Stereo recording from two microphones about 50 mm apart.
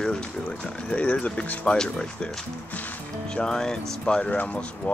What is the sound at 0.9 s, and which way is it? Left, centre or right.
Speech, left.